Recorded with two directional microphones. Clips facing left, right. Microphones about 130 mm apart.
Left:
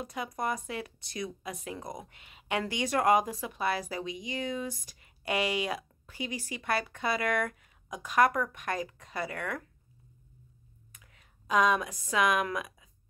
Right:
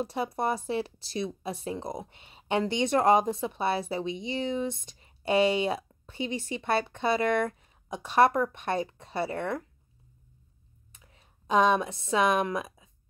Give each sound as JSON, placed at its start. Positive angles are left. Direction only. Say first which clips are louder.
{"t": 0.0, "sound": "speech", "louder": "right 5 dB", "side_deg": -30}
{"t": 11.4, "sound": "speech", "louder": "right 3 dB", "side_deg": -30}